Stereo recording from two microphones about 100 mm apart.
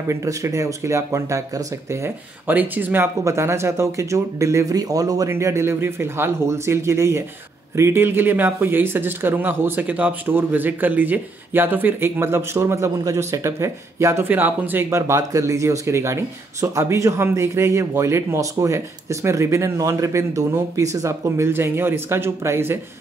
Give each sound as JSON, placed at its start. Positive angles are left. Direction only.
{"t": 0.1, "sound": "speech", "side_deg": -30}
{"t": 1.9, "sound": "speech", "side_deg": -20}
{"t": 5.3, "sound": "speech", "side_deg": -25}